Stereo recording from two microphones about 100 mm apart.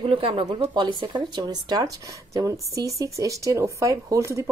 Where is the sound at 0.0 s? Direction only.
65° right (ahead or behind).